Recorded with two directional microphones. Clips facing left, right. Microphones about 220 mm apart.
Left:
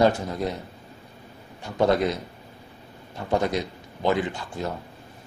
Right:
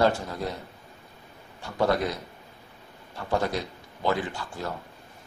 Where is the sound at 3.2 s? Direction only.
20° left (ahead or behind).